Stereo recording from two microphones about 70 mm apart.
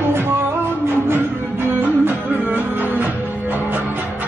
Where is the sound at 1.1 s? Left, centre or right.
Right.